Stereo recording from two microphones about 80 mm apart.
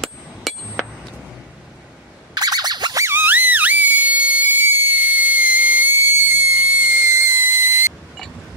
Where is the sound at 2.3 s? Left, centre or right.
Right.